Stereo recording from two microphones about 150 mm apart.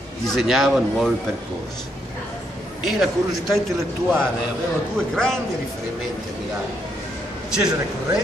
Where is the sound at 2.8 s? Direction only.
Centre (ahead or behind).